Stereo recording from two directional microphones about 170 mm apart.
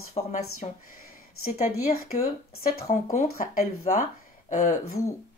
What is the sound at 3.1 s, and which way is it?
Speech, 50° left (ahead or behind).